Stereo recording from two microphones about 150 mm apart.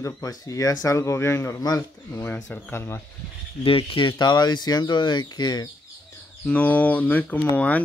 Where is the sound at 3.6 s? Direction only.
35° left (ahead or behind).